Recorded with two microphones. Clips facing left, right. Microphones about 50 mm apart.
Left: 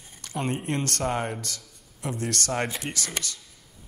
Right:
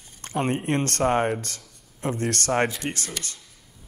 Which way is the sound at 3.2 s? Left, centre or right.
Left.